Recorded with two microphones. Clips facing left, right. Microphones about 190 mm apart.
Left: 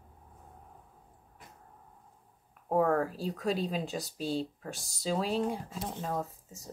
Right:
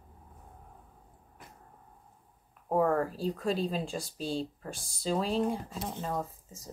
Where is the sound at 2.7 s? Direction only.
Centre (ahead or behind).